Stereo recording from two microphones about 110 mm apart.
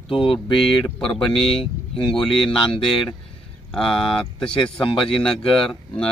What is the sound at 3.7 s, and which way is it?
A man's voice, 5° left (ahead or behind).